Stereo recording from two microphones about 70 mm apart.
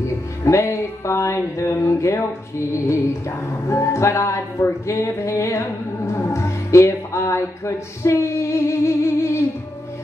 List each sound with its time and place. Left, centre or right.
0.5 s music: left
6.1 s speech: left